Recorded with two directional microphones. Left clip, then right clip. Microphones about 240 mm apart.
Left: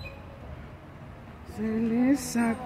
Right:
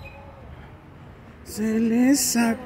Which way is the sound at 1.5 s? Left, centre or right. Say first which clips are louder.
Right 6 dB; right.